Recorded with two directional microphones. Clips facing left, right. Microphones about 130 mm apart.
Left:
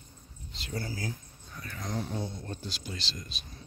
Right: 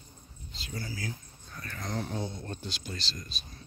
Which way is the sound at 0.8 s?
40° left (ahead or behind).